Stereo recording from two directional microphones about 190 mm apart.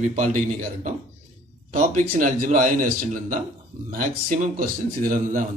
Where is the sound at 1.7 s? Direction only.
45° right (ahead or behind).